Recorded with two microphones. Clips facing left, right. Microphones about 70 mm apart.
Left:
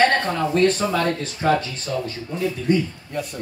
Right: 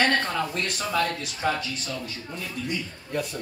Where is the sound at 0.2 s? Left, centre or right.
Centre.